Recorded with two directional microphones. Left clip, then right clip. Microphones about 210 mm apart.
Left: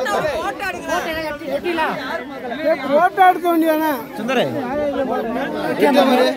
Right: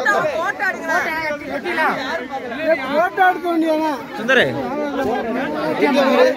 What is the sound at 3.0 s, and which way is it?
Speech, 45° left (ahead or behind).